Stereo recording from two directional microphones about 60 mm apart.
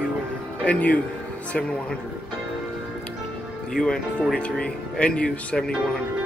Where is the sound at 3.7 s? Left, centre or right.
Centre.